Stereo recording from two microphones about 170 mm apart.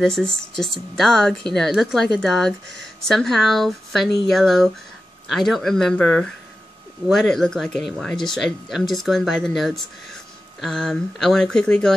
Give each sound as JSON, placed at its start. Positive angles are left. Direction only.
{"t": 0.0, "sound": "speech", "side_deg": 5}